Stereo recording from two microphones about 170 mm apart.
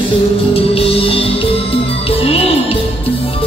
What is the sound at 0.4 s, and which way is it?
Music, 35° left (ahead or behind).